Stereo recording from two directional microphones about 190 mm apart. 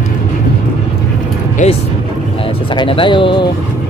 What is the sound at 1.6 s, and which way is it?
Speech, 40° left (ahead or behind).